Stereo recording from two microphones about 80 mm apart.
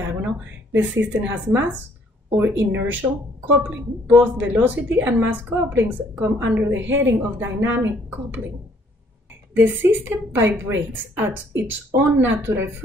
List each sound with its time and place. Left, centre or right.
0.0 s a sound: right
1.2 s a woman's voice: right
9.6 s a woman's voice: right